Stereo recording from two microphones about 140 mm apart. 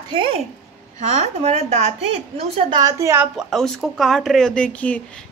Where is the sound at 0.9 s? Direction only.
60° right (ahead or behind).